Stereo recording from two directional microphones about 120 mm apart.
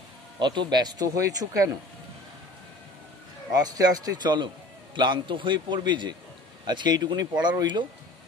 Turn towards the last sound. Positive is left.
turn(degrees=-40)  # may be behind; listen again after turning